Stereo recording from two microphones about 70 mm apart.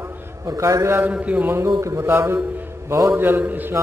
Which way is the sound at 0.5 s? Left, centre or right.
Right.